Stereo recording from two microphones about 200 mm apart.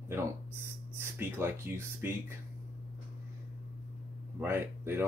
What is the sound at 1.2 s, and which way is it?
Speech, 10° right (ahead or behind).